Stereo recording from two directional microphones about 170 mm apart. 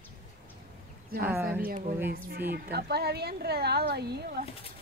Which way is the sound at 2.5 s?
70° right (ahead or behind).